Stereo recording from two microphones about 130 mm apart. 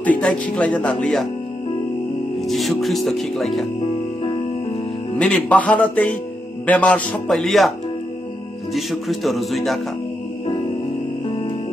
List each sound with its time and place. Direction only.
0.0 s speech: 10° left (ahead or behind)
2.4 s speech: centre (ahead or behind)
3.8 s music: 45° left (ahead or behind)
5.2 s speech: 10° left (ahead or behind)
8.7 s speech: centre (ahead or behind)
10.4 s music: 45° left (ahead or behind)